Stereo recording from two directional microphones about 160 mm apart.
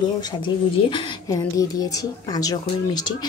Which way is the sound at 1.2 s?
20° left (ahead or behind).